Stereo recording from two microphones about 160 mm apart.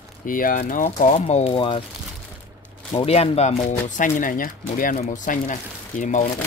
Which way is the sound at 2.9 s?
35° left (ahead or behind).